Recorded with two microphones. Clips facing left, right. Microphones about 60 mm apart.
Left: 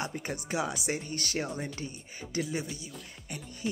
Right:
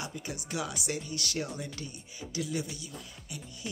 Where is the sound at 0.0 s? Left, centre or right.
Left.